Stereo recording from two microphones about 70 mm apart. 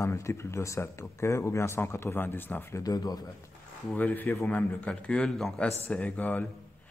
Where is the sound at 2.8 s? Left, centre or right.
Left.